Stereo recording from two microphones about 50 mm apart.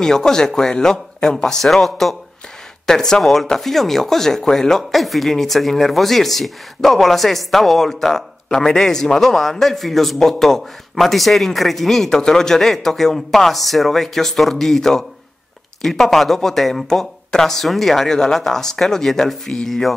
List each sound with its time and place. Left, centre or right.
0.0 s speech: centre